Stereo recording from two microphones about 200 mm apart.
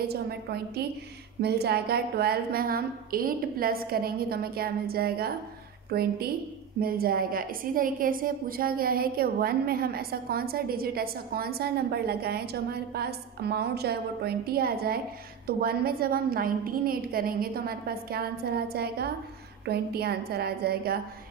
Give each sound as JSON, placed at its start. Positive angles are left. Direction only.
{"t": 0.0, "sound": "a woman's voice", "side_deg": -50}